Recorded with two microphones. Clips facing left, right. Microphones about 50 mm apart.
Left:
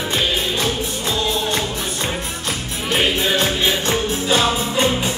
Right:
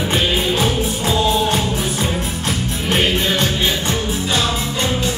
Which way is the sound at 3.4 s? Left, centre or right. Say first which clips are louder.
Even; centre.